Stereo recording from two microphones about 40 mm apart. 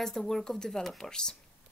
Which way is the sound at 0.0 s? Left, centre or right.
Centre.